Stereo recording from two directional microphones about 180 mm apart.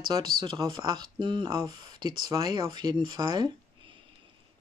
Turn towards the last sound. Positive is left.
turn(degrees=-25)  # may be behind; listen again after turning